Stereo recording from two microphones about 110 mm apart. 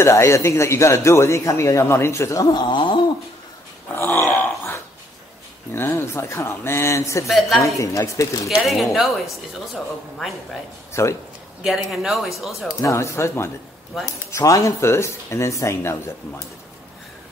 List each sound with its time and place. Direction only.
0.0 s speech: 25° left (ahead or behind)
2.6 s a sound: 50° left (ahead or behind)
3.9 s dog: 20° left (ahead or behind)
5.7 s speech: 20° left (ahead or behind)
7.2 s speech: centre (ahead or behind)
7.6 s speech: 30° left (ahead or behind)
8.5 s speech: centre (ahead or behind)
10.9 s a man's voice: 25° left (ahead or behind)
11.6 s speech: centre (ahead or behind)
12.8 s speech: 25° left (ahead or behind)
13.9 s speech: centre (ahead or behind)
14.3 s speech: 30° left (ahead or behind)